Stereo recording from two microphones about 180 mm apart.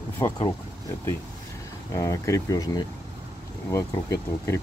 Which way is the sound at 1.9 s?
15° left (ahead or behind).